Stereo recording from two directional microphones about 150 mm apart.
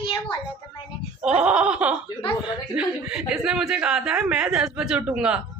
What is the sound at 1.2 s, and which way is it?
A woman's voice, 5° right (ahead or behind).